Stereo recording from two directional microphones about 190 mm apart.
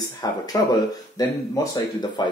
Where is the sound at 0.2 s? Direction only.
20° left (ahead or behind).